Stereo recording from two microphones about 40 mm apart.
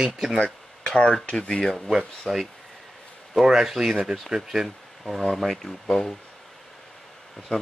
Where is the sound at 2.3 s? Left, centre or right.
Left.